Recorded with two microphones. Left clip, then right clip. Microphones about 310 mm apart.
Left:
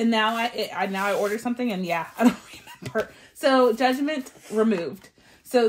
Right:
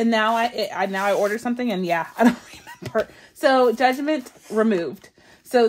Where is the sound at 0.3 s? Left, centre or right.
Right.